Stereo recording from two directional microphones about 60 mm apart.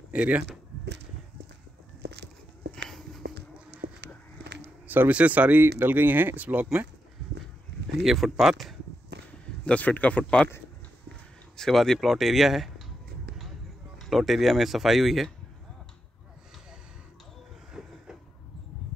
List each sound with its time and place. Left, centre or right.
0.1 s speech: centre
4.8 s speech: right
8.0 s speech: centre
9.7 s speech: left
11.5 s speech: centre
13.9 s speech: centre
17.8 s vehicle: centre